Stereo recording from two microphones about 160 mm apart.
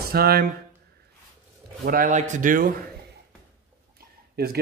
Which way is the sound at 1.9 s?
55° right (ahead or behind).